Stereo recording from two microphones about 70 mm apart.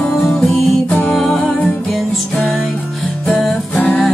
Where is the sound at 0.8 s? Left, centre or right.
Left.